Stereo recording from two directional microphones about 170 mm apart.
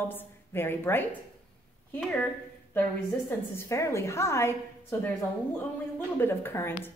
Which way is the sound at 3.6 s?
15° left (ahead or behind).